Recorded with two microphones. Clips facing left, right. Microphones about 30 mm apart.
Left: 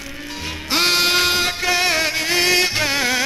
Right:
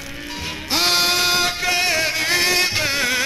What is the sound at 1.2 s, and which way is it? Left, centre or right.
Music, left.